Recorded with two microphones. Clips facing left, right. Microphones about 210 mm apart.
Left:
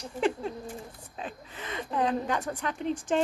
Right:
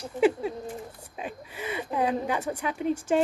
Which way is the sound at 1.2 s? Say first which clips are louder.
Right 4 dB; 10° right (ahead or behind).